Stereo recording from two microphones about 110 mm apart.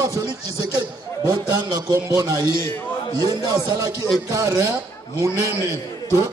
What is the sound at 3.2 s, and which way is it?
Speech, 40° right (ahead or behind).